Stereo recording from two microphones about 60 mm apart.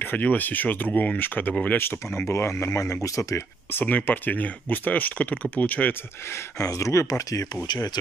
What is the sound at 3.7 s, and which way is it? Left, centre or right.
Speech, left.